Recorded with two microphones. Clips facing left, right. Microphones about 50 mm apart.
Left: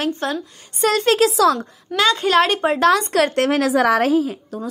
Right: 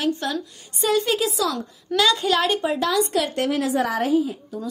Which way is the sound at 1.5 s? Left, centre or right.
Left.